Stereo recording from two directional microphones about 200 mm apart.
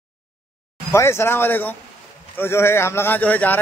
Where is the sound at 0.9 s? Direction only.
15° left (ahead or behind).